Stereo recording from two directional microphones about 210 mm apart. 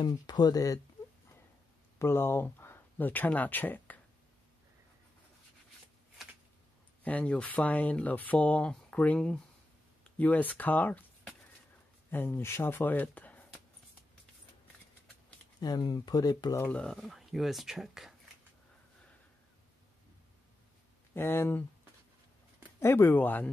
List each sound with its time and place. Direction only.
0.0 s speech: 20° left (ahead or behind)
2.0 s speech: 10° left (ahead or behind)
7.0 s speech: 5° left (ahead or behind)
15.6 s speech: 20° left (ahead or behind); by 18.1 s centre (ahead or behind)
21.1 s speech: 10° left (ahead or behind)
22.8 s speech: 10° left (ahead or behind)